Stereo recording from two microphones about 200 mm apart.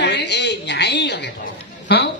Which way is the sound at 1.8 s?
55° left (ahead or behind).